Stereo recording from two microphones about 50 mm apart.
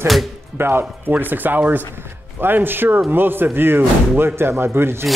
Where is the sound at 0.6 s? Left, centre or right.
Right.